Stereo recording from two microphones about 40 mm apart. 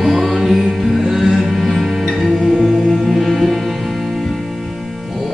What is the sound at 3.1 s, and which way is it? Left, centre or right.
Music, centre.